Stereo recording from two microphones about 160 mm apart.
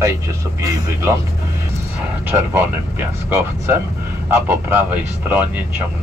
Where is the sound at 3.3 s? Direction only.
15° right (ahead or behind).